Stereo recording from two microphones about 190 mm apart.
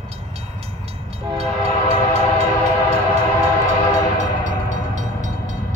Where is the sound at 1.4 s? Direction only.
35° right (ahead or behind).